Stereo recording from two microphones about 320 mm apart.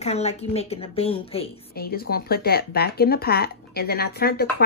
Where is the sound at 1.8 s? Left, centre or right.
Left.